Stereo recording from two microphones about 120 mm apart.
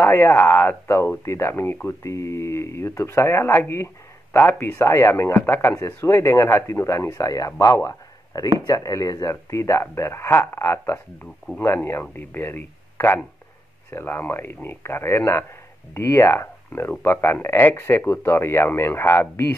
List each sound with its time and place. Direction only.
0.0 s speech: 20° left (ahead or behind)